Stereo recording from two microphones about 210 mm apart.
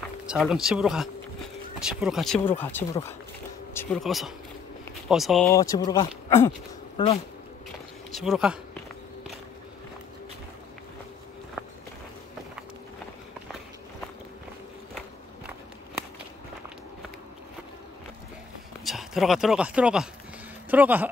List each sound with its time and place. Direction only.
0.3 s speech: centre (ahead or behind)
5.5 s speech: 15° left (ahead or behind)
8.1 s speech: centre (ahead or behind)
18.9 s speech: centre (ahead or behind)